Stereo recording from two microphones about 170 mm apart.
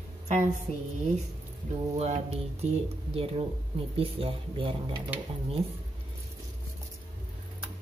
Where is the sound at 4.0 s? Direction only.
35° right (ahead or behind).